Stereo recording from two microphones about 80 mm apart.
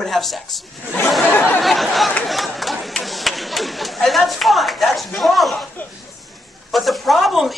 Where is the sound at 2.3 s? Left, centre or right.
Centre.